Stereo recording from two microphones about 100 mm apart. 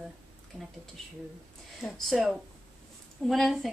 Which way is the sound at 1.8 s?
5° left (ahead or behind).